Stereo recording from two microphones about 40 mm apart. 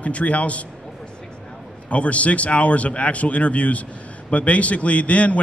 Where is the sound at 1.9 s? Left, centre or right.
Left.